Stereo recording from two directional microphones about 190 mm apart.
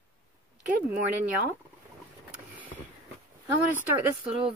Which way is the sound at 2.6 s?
10° right (ahead or behind).